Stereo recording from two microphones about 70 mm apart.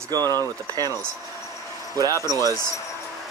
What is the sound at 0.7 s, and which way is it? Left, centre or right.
Speech, right.